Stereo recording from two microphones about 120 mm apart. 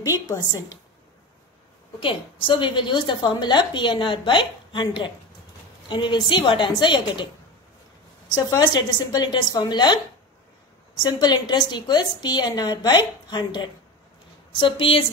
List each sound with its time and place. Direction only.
0.3 s a woman's voice: 35° left (ahead or behind)
2.0 s a woman's voice: 45° left (ahead or behind)
8.3 s a woman's voice: 35° left (ahead or behind)
11.0 s a woman's voice: 35° left (ahead or behind)